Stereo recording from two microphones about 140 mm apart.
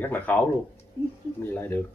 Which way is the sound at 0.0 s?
15° left (ahead or behind).